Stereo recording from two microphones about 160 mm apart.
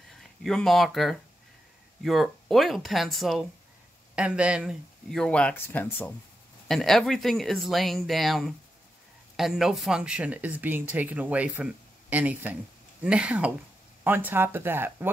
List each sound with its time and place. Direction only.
0.1 s speech: centre (ahead or behind); by 15.0 s 15° right (ahead or behind)